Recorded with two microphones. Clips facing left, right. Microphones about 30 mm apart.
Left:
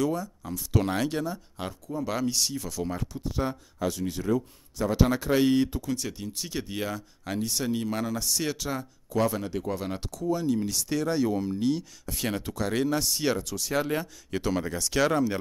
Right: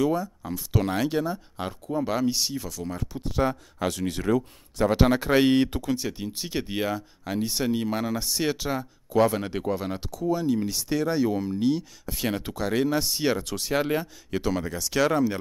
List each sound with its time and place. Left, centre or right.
0.0 s speech: centre
0.7 s speech: centre
1.2 s speech: centre
2.7 s speech: centre
3.3 s speech: right
4.8 s speech: right
6.1 s speech: right
9.3 s speech: right
9.7 s speech: centre
13.4 s speech: right
13.7 s speech: right
13.9 s speech: centre